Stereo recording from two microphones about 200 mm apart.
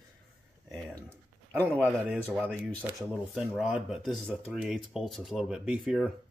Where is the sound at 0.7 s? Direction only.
10° right (ahead or behind).